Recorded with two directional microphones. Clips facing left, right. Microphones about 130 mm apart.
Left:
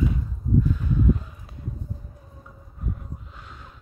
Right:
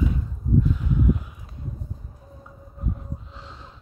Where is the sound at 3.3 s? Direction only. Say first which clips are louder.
Right 2 dB; 25° right (ahead or behind).